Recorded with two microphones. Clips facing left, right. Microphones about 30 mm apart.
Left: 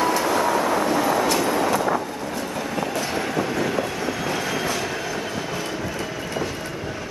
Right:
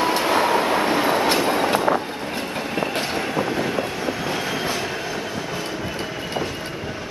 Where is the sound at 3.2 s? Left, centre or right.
Right.